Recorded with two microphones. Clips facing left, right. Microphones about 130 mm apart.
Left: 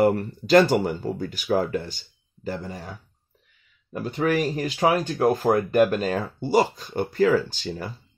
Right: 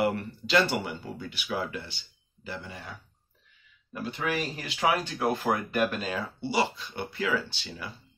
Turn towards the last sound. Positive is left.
turn(degrees=40)  # may be behind; listen again after turning